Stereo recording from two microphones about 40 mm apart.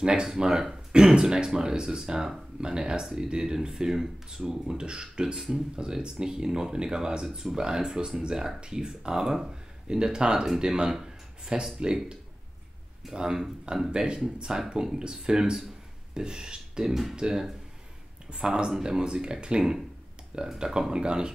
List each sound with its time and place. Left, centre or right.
0.0 s speech: centre